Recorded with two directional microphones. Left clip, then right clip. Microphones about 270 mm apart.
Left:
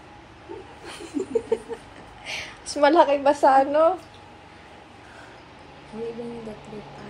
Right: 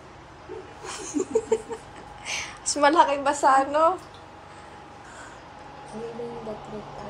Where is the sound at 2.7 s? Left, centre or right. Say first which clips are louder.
Left 2 dB; centre.